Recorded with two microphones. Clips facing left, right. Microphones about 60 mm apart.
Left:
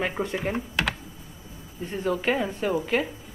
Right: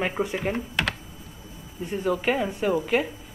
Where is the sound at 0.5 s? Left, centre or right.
Centre.